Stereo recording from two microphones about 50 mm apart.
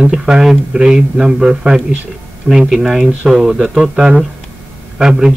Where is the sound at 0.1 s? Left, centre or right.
Centre.